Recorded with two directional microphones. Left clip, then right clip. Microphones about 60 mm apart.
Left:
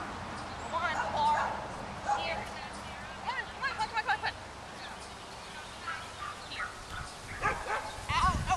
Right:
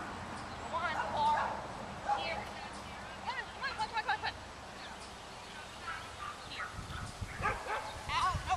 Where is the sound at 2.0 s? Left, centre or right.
Centre.